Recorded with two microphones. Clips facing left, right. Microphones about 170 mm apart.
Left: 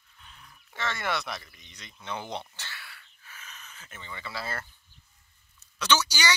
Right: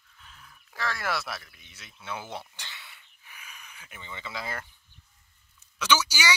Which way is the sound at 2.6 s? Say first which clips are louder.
Left 2 dB; 20° right (ahead or behind).